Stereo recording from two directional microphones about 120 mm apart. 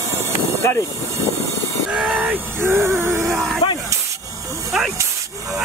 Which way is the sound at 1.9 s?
5° right (ahead or behind).